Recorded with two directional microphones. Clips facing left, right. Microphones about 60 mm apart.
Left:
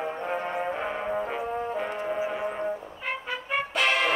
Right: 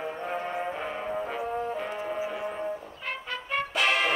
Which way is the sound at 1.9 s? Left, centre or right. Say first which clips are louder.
Left 2 dB; centre.